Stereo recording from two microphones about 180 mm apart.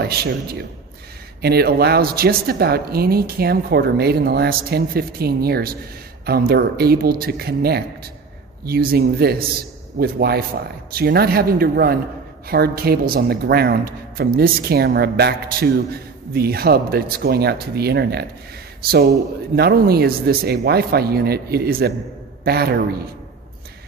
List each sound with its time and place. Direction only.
0.0 s speech: 60° right (ahead or behind)